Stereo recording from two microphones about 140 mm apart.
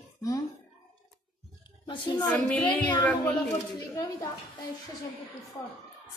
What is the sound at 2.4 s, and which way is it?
Speech, 10° left (ahead or behind).